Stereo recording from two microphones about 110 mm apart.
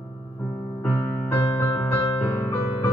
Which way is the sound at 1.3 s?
15° left (ahead or behind).